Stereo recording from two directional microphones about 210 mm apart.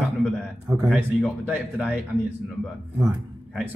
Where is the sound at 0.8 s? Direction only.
Centre (ahead or behind).